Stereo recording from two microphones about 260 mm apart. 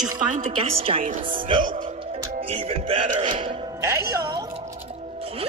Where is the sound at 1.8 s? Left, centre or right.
Centre.